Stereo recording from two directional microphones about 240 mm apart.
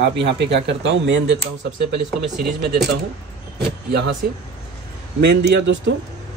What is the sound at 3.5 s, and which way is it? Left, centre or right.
Vehicle, right.